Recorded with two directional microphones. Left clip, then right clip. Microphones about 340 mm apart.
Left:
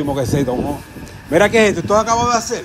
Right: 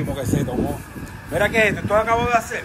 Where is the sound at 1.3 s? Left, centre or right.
Left.